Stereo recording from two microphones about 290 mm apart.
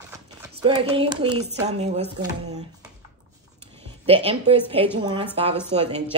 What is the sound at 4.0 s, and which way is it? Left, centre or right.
Speech, centre.